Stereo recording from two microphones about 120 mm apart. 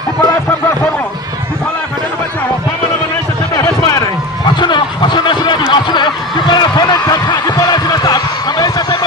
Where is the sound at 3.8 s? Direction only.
35° left (ahead or behind).